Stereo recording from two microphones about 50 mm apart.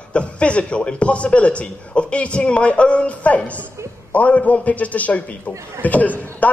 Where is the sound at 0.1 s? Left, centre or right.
Left.